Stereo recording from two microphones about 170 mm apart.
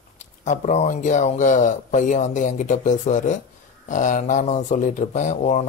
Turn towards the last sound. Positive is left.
turn(degrees=45)  # may be behind; listen again after turning